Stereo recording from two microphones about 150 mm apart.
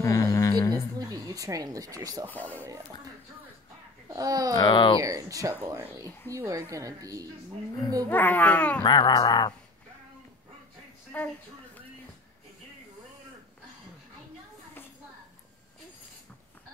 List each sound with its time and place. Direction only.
0.0 s a sound: 20° left (ahead or behind)
0.9 s speech: 25° right (ahead or behind)
2.3 s speech: 10° left (ahead or behind)
4.1 s a woman's voice: 25° right (ahead or behind)
4.6 s speech: 30° left (ahead or behind)
5.0 s a woman's voice: 20° right (ahead or behind)
8.1 s speech: 10° left (ahead or behind)
8.8 s music: 30° left (ahead or behind)
11.1 s speech: 10° left (ahead or behind)